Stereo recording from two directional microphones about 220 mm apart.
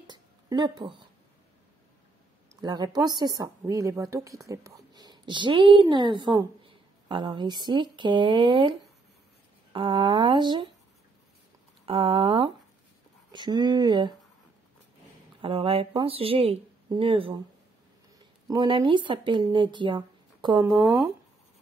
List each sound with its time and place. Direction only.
0.0 s a sound: 20° right (ahead or behind)
2.6 s a woman's voice: 20° right (ahead or behind)
11.8 s speech: 25° right (ahead or behind)
15.4 s speech: 25° right (ahead or behind)
18.5 s speech: 20° right (ahead or behind)